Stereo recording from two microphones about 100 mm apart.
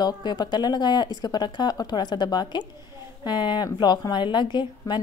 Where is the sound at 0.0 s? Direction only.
45° left (ahead or behind).